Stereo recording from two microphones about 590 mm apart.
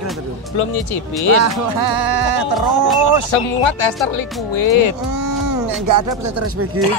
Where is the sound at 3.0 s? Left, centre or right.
Left.